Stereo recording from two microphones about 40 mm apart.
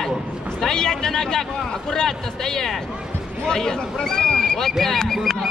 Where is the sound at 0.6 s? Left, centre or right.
Centre.